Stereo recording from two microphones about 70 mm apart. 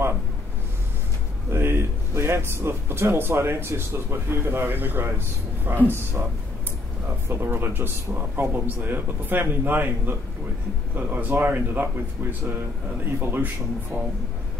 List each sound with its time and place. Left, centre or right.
1.5 s speech: right
7.2 s speech: right